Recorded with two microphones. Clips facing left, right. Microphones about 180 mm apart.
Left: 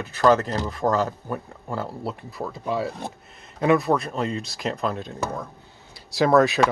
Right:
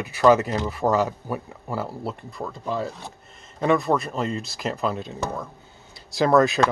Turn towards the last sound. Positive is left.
turn(degrees=0)  # may be behind; listen again after turning